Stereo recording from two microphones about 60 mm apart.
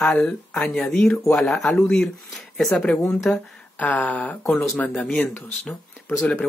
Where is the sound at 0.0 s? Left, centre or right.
Left.